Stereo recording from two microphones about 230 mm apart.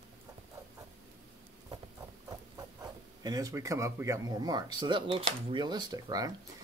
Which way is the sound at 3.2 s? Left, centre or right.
Centre.